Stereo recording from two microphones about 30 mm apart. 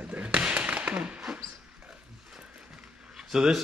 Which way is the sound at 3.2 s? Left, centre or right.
Centre.